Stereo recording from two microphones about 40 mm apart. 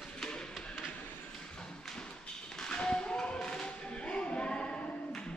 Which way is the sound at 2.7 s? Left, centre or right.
Left.